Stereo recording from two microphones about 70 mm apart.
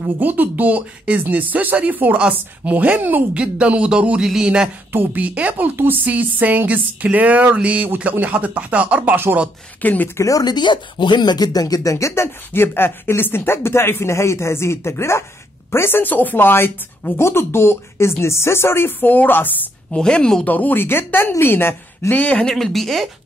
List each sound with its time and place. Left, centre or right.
0.2 s speech: right; by 4.6 s centre
4.9 s speech: right
9.8 s speech: left
10.1 s speech: left
10.4 s speech: left
12.5 s speech: left
19.9 s speech: centre
20.4 s speech: left
22.2 s speech: centre
22.5 s speech: centre